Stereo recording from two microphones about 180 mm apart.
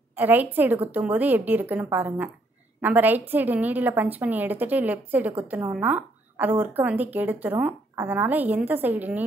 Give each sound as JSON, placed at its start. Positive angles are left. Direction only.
{"t": 0.1, "sound": "speech", "side_deg": -10}